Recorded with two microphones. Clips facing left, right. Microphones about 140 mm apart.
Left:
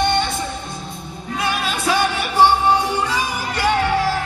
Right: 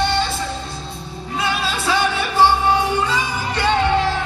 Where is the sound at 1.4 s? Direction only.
15° left (ahead or behind).